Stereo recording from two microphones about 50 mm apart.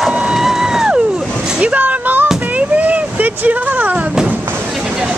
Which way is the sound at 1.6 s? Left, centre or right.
Right.